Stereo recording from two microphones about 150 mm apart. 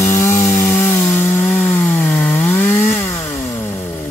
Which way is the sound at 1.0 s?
10° left (ahead or behind).